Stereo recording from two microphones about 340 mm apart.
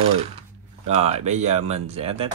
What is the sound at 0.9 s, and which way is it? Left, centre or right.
Speech, centre.